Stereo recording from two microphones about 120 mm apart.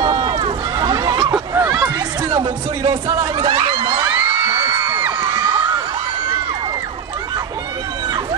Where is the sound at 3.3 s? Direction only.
50° right (ahead or behind).